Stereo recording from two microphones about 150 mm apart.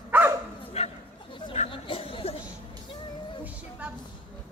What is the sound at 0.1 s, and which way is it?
Dog, 10° right (ahead or behind).